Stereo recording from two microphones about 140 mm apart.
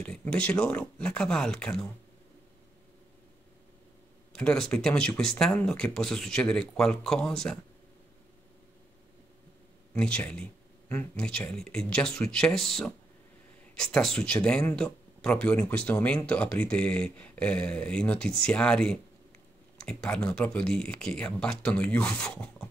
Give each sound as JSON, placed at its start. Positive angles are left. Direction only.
{"t": 0.0, "sound": "speech", "side_deg": 10}
{"t": 4.3, "sound": "speech", "side_deg": 5}
{"t": 9.9, "sound": "speech", "side_deg": 10}
{"t": 13.9, "sound": "speech", "side_deg": 5}